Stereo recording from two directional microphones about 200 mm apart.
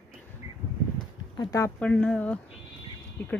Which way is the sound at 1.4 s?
15° left (ahead or behind).